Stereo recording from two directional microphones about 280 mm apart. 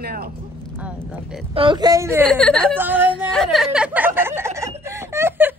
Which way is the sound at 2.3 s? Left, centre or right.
Centre.